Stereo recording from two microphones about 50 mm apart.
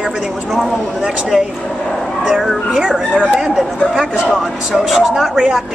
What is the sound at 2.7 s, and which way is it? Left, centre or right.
Speech, centre.